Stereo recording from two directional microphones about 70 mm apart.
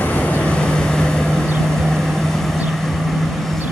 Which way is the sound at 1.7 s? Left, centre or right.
Centre.